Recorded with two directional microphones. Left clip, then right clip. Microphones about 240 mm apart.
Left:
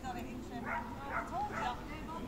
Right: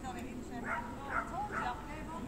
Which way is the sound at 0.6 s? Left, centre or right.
Right.